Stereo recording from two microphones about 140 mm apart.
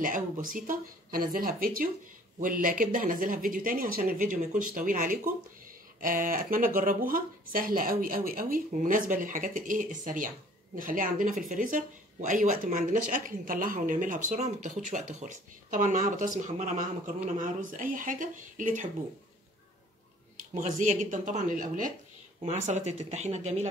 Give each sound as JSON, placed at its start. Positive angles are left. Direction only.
{"t": 0.0, "sound": "speech", "side_deg": -75}
{"t": 20.5, "sound": "speech", "side_deg": -65}
{"t": 22.5, "sound": "speech", "side_deg": -55}